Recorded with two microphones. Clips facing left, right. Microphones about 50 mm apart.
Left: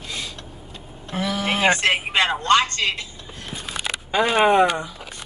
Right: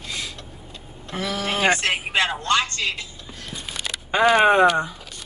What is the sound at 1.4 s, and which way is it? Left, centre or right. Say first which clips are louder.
Speech: left 2 dB; left.